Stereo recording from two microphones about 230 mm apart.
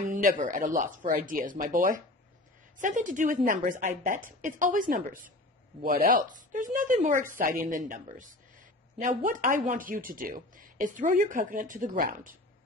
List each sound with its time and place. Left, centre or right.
0.1 s speech: right